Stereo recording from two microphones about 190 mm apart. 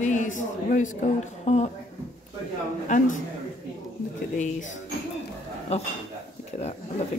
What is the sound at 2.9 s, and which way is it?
Speech, 40° left (ahead or behind).